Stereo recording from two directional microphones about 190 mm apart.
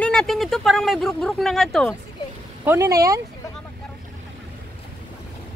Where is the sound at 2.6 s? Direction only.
15° right (ahead or behind).